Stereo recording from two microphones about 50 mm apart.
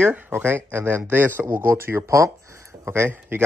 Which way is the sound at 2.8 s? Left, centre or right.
Right.